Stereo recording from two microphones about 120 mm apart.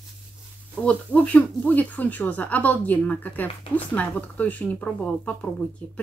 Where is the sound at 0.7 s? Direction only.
10° left (ahead or behind).